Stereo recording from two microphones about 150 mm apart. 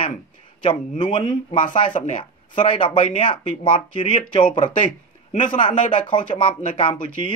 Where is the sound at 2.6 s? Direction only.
35° left (ahead or behind).